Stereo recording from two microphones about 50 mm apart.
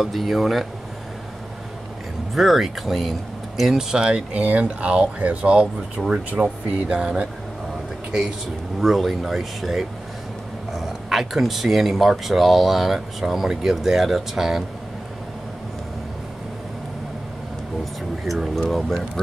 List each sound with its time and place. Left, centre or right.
0.0 s speech: centre
2.3 s speech: centre
3.7 s speech: centre
4.3 s speech: right
8.8 s speech: centre
18.2 s speech: centre